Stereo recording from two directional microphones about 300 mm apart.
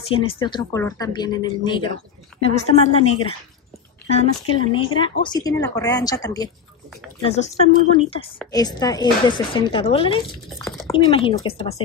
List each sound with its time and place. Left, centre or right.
0.1 s speech: centre